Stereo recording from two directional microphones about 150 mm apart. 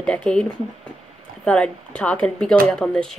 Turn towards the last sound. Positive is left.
turn(degrees=5)  # may be behind; listen again after turning